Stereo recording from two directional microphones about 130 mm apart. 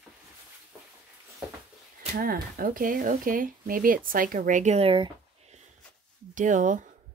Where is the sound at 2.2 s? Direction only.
90° right; by 4.9 s 60° right (ahead or behind).